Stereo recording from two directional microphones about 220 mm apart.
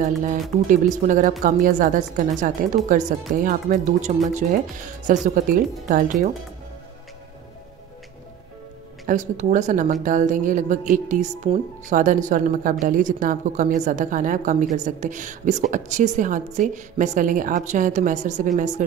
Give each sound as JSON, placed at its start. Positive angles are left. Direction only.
{"t": 0.2, "sound": "speech", "side_deg": -35}
{"t": 9.0, "sound": "speech", "side_deg": -35}